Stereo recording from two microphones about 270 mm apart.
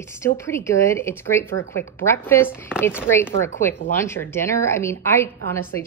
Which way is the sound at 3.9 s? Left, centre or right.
Centre.